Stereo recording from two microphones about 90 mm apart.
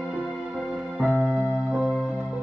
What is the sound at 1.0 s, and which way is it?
Music, 20° right (ahead or behind).